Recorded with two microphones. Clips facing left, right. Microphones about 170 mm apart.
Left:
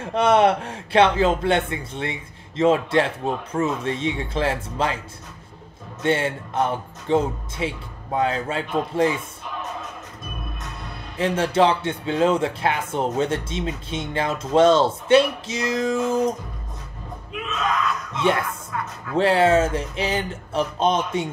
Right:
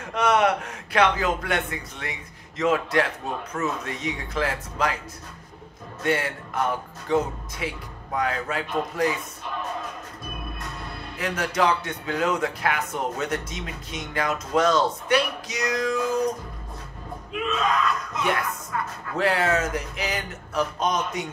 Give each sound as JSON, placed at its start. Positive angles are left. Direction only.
{"t": 0.0, "sound": "speech", "side_deg": 30}
{"t": 6.0, "sound": "speech", "side_deg": 25}
{"t": 11.1, "sound": "speech", "side_deg": 25}
{"t": 17.3, "sound": "music", "side_deg": 0}
{"t": 19.1, "sound": "speech", "side_deg": 30}